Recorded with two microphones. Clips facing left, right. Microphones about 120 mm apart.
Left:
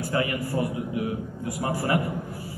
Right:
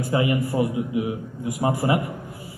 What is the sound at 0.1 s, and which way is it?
A man's voice, 20° right (ahead or behind).